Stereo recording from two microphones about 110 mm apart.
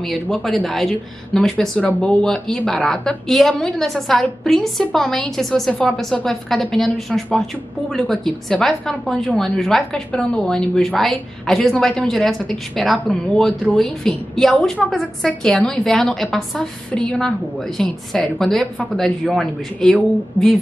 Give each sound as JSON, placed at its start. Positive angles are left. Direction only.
{"t": 0.0, "sound": "a woman's voice", "side_deg": 0}